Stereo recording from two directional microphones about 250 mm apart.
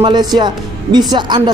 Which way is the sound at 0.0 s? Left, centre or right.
Centre.